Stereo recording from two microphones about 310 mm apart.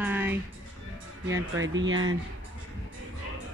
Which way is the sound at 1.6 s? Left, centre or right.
Right.